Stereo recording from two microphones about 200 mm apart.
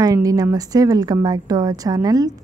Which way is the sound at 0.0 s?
15° right (ahead or behind).